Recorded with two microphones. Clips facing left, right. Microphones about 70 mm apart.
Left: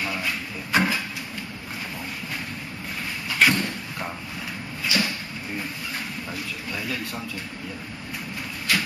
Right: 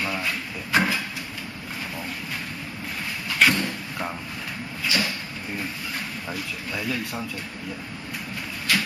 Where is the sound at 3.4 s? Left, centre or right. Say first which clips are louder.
Even; centre.